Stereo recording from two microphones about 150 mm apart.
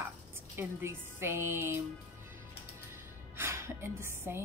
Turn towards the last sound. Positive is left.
turn(degrees=-15)  # may be behind; listen again after turning